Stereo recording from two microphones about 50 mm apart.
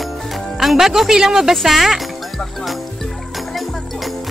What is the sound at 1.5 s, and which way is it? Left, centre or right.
Music, centre.